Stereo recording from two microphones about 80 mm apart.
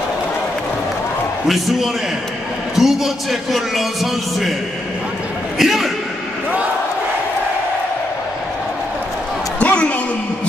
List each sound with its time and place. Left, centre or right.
1.5 s a man's voice: centre
5.6 s a man's voice: centre
9.6 s a sound: centre